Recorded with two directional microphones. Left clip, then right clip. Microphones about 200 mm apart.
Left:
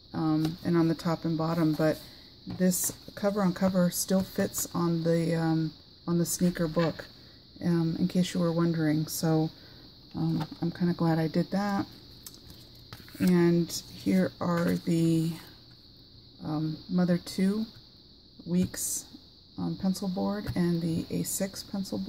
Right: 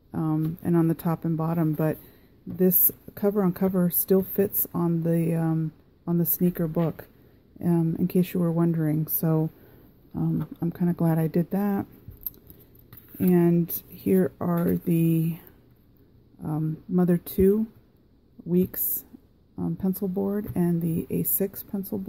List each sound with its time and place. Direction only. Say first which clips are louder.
0.1 s speech: even; 35° right (ahead or behind)
13.3 s speech: right 3 dB; 40° right (ahead or behind)
16.4 s speech: right 2 dB; 40° right (ahead or behind)